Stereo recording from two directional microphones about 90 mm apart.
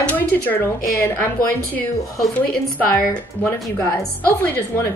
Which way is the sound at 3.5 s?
25° left (ahead or behind).